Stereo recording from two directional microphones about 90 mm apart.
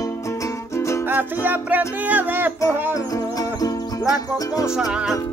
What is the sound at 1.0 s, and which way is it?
Music, 20° right (ahead or behind).